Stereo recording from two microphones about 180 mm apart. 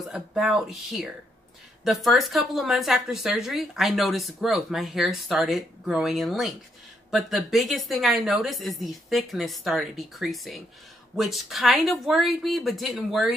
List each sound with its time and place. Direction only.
0.0 s a woman's voice: centre (ahead or behind)